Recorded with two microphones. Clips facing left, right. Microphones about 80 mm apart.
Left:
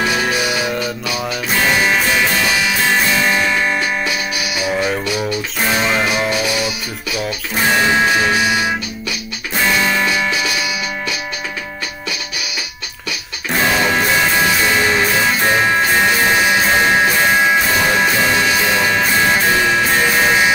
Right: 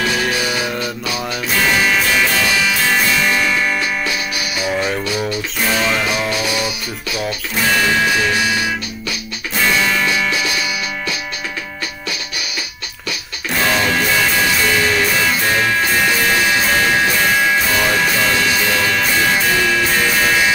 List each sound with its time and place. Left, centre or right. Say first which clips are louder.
0.0 s music: left 1 dB; centre
1.8 s music: even; left
4.6 s music: left 1 dB; centre
5.8 s music: left 1 dB; left
6.0 s music: left 2 dB; centre
7.7 s music: left 2 dB; left
9.7 s music: left 1 dB; centre
13.5 s music: left 1 dB; centre